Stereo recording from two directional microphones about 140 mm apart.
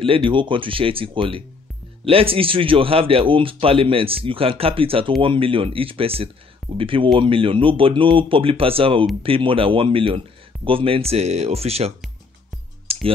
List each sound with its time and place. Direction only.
0.0 s speech: 40° right (ahead or behind)
12.9 s clicking: 45° right (ahead or behind)